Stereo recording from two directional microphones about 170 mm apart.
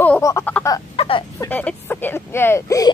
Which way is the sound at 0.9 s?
35° left (ahead or behind).